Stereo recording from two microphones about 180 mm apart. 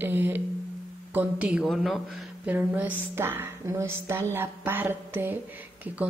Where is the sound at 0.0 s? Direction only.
10° right (ahead or behind).